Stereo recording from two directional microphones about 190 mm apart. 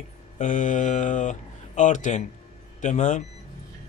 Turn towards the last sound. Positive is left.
turn(degrees=40)  # may be behind; listen again after turning